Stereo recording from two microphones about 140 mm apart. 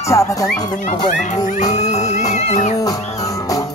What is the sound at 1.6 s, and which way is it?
Music, 55° left (ahead or behind).